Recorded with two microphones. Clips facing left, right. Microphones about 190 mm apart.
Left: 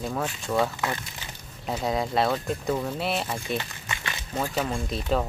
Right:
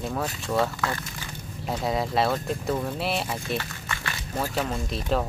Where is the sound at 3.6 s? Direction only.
20° left (ahead or behind).